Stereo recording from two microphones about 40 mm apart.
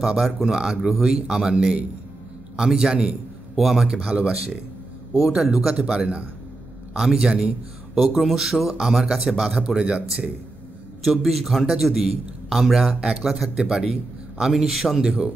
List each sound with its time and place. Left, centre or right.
0.0 s a man's voice: centre
3.5 s a man's voice: centre
3.9 s a man's voice: right
5.1 s a man's voice: centre
7.0 s a man's voice: centre
11.1 s a man's voice: centre